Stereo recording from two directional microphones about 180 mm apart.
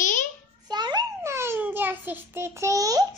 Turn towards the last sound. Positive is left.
turn(degrees=-20)  # may be behind; listen again after turning